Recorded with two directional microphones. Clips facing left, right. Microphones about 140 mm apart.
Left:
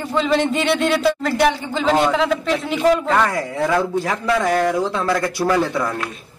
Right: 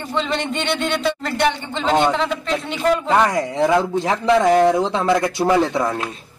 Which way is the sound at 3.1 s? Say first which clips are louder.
Right 2 dB; 20° right (ahead or behind).